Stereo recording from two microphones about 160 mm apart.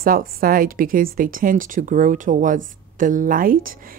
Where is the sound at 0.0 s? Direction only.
65° right (ahead or behind).